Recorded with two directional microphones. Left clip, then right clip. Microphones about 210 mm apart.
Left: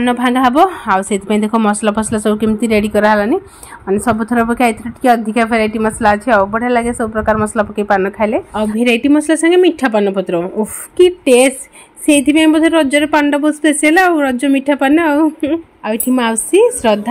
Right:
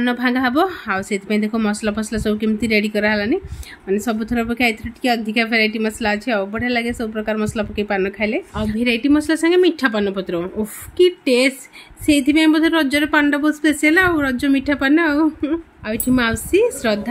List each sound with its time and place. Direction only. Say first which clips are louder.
0.0 s a woman's voice: left 6 dB; 5° left (ahead or behind)